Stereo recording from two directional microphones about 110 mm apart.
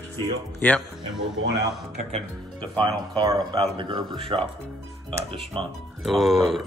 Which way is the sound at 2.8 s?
35° right (ahead or behind).